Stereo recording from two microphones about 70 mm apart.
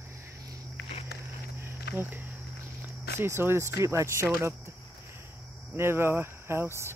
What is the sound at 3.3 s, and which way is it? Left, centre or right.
Speech, right.